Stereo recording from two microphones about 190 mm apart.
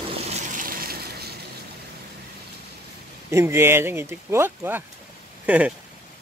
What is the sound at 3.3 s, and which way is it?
Speech, 15° right (ahead or behind).